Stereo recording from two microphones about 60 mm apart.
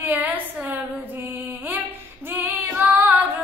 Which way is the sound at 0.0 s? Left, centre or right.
Right.